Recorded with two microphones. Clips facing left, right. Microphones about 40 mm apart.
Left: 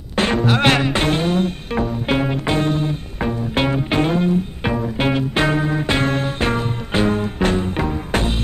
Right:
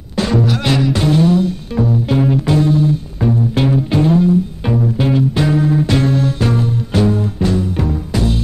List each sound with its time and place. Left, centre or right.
0.2 s music: left
7.1 s music: left